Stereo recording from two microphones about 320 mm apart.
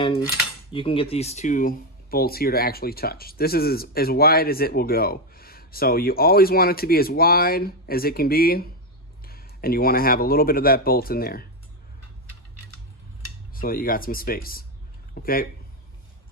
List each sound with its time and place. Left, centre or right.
0.0 s cutlery: centre
0.7 s speech: centre
13.6 s speech: left